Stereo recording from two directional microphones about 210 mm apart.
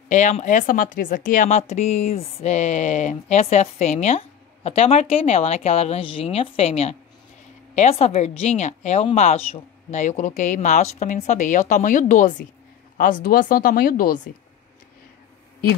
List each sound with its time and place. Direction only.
0.1 s speech: 35° left (ahead or behind)